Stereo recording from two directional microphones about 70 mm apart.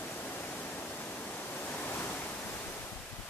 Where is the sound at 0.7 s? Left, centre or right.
Left.